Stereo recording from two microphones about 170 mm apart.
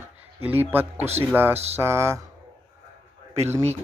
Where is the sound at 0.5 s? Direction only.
10° right (ahead or behind).